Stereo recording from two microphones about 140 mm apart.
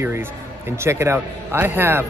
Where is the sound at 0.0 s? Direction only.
15° right (ahead or behind).